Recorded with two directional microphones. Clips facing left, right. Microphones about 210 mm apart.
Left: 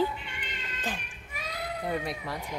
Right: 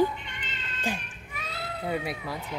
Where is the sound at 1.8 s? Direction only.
5° right (ahead or behind).